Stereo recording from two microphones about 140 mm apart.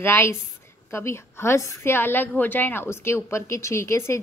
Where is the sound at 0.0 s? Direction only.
15° left (ahead or behind).